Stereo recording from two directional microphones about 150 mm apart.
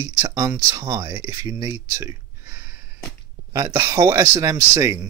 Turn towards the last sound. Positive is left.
turn(degrees=-20)  # may be behind; listen again after turning